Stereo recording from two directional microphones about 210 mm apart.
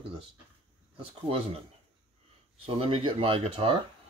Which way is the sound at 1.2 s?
25° right (ahead or behind).